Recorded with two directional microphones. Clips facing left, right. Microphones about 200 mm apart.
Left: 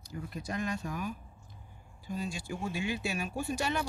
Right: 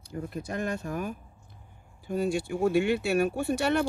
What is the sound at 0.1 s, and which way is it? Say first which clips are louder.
Speech: right 4 dB; 55° right (ahead or behind).